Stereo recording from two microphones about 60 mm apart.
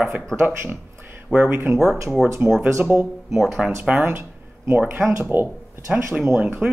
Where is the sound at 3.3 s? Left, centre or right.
Centre.